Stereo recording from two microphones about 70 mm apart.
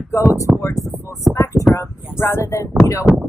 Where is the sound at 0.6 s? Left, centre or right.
Left.